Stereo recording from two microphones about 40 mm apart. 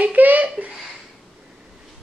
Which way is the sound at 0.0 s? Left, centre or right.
Right.